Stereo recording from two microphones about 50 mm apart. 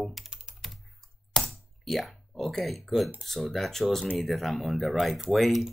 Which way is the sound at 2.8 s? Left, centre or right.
Centre.